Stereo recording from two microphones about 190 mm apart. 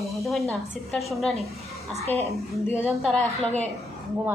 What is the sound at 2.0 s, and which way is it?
Speech, 35° right (ahead or behind).